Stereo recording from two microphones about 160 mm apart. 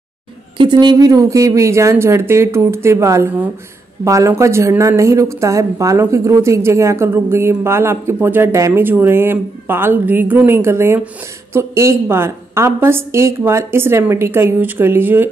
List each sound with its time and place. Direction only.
0.6 s speech: 30° right (ahead or behind); by 15.2 s 10° right (ahead or behind)